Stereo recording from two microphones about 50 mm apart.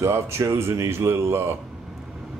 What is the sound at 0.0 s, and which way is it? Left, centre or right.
A man's voice, right.